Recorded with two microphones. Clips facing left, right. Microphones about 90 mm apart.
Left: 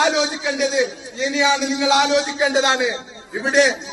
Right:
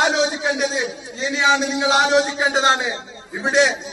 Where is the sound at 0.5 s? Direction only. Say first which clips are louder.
Left 3 dB; 40° right (ahead or behind).